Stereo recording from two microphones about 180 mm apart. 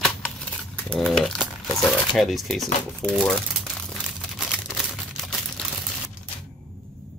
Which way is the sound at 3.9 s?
Centre (ahead or behind).